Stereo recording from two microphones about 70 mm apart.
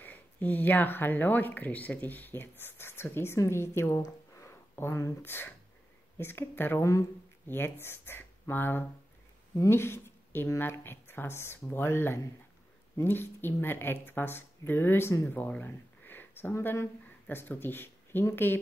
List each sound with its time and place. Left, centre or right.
0.0 s speech: left
6.8 s speech: left
7.4 s speech: left
15.6 s a sound: left
16.7 s speech: left